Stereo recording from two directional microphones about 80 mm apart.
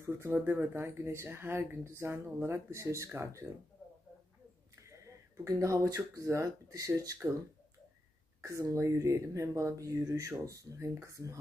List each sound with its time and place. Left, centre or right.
0.0 s speech: right
4.8 s speech: right
8.4 s speech: right